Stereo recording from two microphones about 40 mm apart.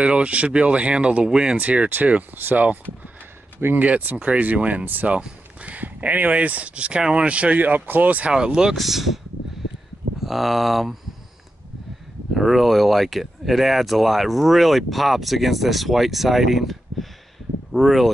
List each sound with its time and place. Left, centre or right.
0.0 s speech: right
1.6 s speech: right
7.5 s speech: right
8.3 s speech: centre
8.7 s speech: centre
10.2 s speech: centre
12.4 s speech: centre